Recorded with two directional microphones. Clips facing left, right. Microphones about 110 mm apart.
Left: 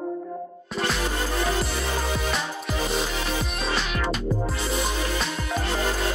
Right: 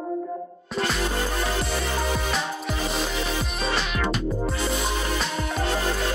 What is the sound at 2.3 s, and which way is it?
Music, centre (ahead or behind).